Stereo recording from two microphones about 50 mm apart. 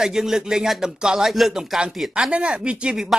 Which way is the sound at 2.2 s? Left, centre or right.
Right.